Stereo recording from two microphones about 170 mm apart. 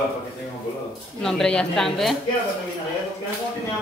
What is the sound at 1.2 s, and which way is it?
Speech, 5° left (ahead or behind).